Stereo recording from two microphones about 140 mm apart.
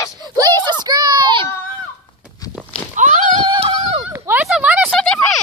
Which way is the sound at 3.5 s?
45° right (ahead or behind).